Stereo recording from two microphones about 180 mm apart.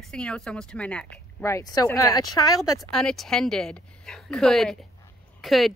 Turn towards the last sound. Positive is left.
turn(degrees=0)  # may be behind; listen again after turning